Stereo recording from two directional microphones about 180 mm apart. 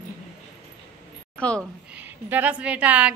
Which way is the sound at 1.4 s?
5° left (ahead or behind).